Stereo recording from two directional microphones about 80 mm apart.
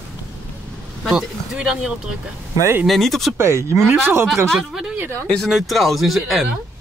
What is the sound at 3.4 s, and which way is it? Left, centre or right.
Speech, right.